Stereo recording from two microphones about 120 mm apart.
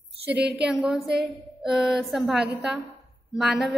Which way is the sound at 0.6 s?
5° right (ahead or behind).